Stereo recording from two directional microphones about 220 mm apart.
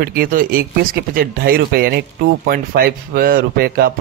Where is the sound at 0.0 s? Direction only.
40° right (ahead or behind).